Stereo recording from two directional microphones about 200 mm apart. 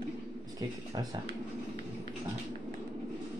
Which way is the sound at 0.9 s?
20° right (ahead or behind).